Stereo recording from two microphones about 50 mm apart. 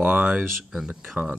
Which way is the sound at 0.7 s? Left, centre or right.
Centre.